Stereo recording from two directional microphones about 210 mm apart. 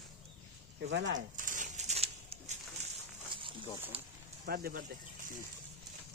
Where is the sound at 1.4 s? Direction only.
40° right (ahead or behind).